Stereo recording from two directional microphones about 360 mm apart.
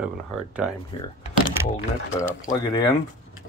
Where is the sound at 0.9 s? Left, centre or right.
Centre.